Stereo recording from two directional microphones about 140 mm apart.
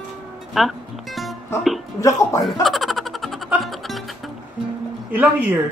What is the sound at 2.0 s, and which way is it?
Speech, 20° left (ahead or behind).